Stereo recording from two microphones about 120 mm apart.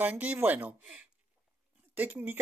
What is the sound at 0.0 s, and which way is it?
Speech, 15° right (ahead or behind).